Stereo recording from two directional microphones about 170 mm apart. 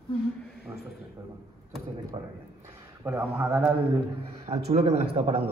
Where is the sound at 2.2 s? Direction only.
25° right (ahead or behind).